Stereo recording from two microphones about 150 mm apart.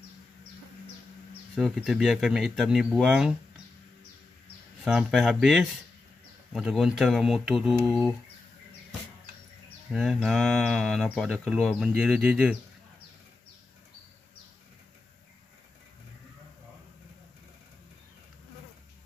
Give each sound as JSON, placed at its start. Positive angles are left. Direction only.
{"t": 1.8, "sound": "speech", "side_deg": 0}
{"t": 4.8, "sound": "speech", "side_deg": -5}
{"t": 9.9, "sound": "speech", "side_deg": 0}